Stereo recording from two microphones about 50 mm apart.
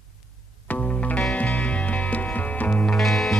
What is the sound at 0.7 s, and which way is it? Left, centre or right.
Music, left.